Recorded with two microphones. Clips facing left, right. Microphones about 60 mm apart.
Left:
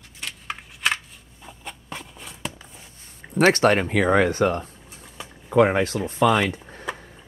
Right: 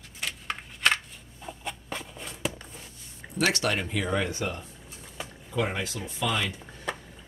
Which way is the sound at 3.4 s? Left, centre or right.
Left.